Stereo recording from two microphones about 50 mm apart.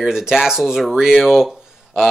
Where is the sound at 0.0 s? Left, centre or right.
Centre.